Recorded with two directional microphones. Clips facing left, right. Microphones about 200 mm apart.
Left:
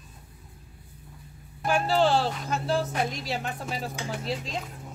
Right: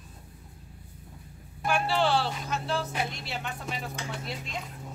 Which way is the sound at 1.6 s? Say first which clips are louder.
Left 3 dB; 40° left (ahead or behind).